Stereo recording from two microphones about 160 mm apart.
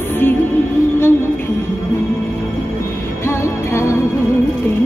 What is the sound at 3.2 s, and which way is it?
Music, 15° left (ahead or behind).